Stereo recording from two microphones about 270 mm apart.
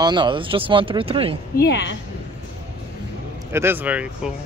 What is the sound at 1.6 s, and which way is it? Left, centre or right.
Speech, left.